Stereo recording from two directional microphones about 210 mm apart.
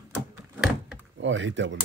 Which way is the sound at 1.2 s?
65° right (ahead or behind).